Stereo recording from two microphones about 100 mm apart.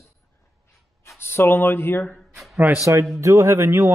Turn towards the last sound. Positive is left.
turn(degrees=-25)  # may be behind; listen again after turning